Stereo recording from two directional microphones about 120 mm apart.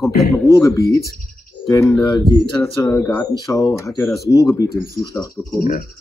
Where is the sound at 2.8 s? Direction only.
20° left (ahead or behind).